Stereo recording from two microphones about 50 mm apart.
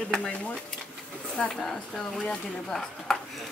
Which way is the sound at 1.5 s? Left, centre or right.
Centre.